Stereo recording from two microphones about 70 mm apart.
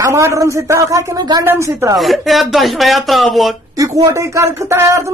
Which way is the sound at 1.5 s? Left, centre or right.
Right.